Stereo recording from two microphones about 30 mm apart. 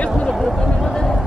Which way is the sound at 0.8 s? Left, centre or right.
Centre.